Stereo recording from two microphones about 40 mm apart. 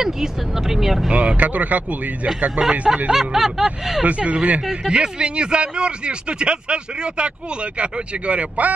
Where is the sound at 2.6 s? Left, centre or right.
Centre.